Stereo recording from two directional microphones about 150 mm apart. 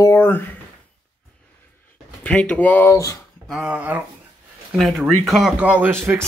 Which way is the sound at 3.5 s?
5° right (ahead or behind).